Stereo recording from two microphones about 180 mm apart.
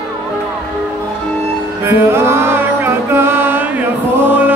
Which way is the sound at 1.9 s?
15° right (ahead or behind).